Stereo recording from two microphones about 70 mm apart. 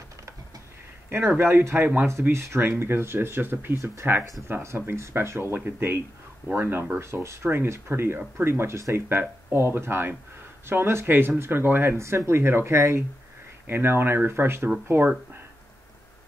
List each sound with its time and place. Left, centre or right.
1.1 s speech: right
12.0 s speech: right